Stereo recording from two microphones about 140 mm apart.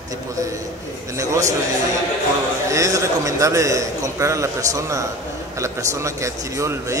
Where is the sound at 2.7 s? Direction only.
20° right (ahead or behind).